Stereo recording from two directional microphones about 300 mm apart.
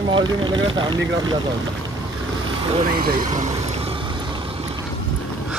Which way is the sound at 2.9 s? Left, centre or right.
Right.